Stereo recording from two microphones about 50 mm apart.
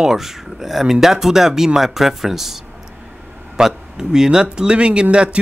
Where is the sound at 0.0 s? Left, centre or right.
Centre.